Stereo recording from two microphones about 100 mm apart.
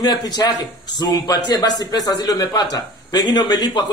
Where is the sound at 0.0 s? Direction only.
45° left (ahead or behind).